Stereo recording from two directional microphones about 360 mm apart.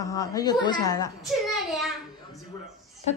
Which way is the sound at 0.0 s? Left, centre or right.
Centre.